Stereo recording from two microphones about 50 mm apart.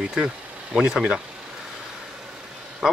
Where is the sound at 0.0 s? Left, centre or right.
Centre.